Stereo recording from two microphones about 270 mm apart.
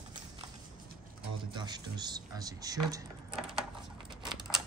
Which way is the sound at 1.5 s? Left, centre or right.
Centre.